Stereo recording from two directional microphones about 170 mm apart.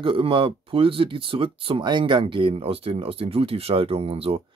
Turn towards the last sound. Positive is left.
turn(degrees=-35)  # may be behind; listen again after turning